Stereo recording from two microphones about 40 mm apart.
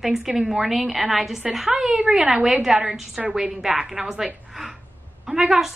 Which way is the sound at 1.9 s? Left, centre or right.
Centre.